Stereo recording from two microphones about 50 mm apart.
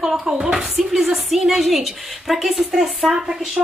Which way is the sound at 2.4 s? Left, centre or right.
Centre.